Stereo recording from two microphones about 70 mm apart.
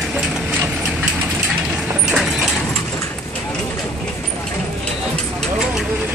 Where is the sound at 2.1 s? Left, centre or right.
Centre.